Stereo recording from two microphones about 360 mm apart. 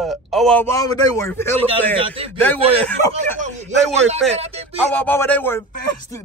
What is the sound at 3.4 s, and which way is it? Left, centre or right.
Speech, centre.